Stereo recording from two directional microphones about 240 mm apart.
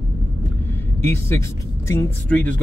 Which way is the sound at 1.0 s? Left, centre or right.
Centre.